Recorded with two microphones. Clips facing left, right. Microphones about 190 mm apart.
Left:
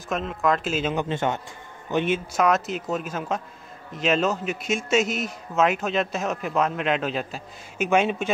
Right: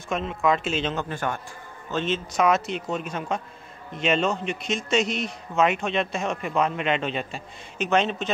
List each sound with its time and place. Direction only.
0.1 s a man's voice: centre (ahead or behind)
0.9 s a man's voice: 20° left (ahead or behind)
2.4 s a man's voice: centre (ahead or behind)